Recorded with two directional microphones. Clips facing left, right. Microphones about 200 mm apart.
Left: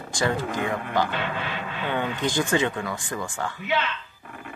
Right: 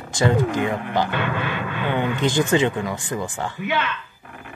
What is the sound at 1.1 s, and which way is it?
Speech, 55° right (ahead or behind).